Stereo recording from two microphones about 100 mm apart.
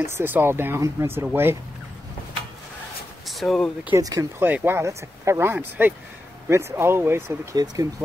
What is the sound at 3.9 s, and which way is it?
Speech, 35° right (ahead or behind).